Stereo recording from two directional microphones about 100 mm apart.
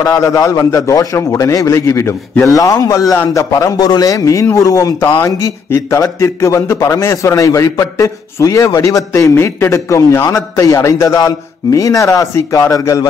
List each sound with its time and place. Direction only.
0.0 s a man's voice: 35° left (ahead or behind)